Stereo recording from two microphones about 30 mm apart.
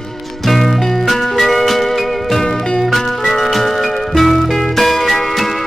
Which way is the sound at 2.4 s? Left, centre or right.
Centre.